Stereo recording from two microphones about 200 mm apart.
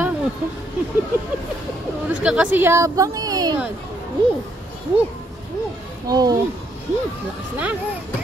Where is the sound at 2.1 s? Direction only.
5° right (ahead or behind).